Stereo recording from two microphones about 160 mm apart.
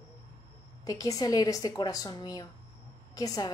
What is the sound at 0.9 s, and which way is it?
A woman's voice, 20° left (ahead or behind).